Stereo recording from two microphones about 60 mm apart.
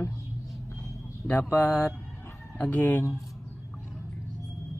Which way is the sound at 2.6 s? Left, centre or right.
Left.